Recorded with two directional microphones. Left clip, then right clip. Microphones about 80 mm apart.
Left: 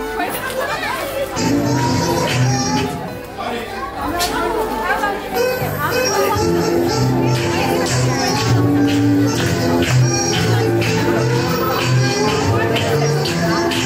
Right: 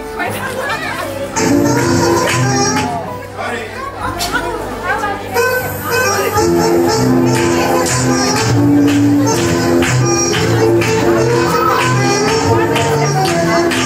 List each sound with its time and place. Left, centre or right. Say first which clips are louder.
8.4 s music: right 4 dB; right
11.8 s music: right 5 dB; right